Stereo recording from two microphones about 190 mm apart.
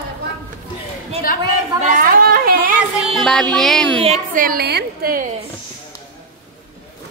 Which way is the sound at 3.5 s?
Centre (ahead or behind).